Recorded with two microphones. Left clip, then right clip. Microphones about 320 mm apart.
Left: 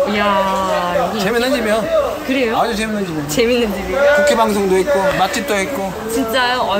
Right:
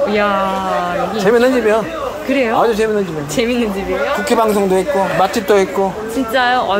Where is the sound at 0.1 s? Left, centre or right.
Centre.